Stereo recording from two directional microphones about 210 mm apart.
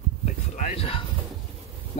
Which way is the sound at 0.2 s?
30° left (ahead or behind).